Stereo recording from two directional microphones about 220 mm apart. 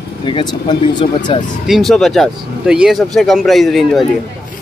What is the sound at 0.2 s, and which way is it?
Speech, 20° left (ahead or behind).